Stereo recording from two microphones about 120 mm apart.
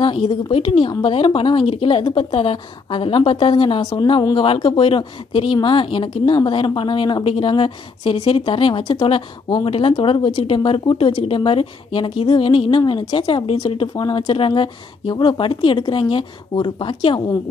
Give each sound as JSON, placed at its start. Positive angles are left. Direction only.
{"t": 0.0, "sound": "speech", "side_deg": 45}